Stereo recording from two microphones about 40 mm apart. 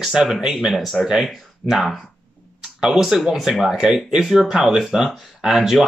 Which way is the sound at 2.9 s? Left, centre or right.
Centre.